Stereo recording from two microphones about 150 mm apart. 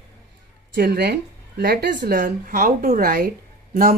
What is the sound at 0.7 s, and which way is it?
Speech, 90° right.